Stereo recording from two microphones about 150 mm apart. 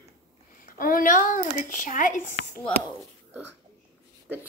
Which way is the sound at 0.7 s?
65° left (ahead or behind).